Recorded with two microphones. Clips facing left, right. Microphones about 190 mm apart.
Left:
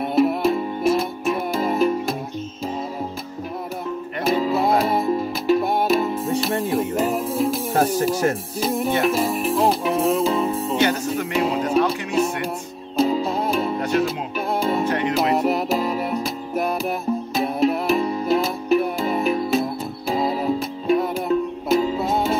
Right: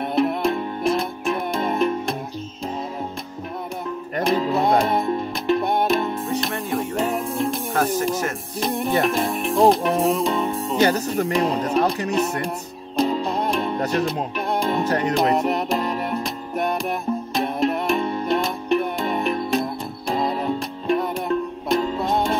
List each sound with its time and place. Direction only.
0.0 s music: centre (ahead or behind)
4.2 s music: centre (ahead or behind)
7.7 s music: 35° left (ahead or behind)
8.5 s music: centre (ahead or behind)
10.8 s music: 35° right (ahead or behind)
11.3 s speech: centre (ahead or behind)
12.1 s music: 5° left (ahead or behind)
14.9 s music: 40° right (ahead or behind)
15.3 s music: centre (ahead or behind)